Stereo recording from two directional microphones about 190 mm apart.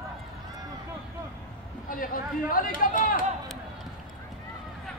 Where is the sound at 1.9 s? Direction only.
45° left (ahead or behind).